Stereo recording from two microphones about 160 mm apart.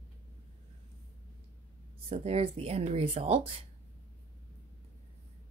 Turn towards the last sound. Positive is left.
turn(degrees=-40)  # may be behind; listen again after turning